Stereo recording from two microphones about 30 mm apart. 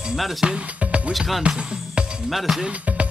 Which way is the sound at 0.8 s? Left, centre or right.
Right.